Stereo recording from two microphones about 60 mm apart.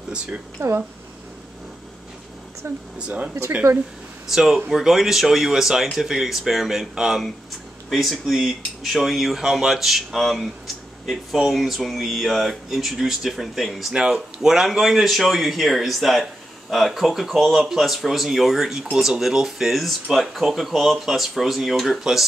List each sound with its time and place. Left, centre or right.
0.6 s speech: right
2.6 s speech: right
3.0 s speech: centre
4.3 s speech: centre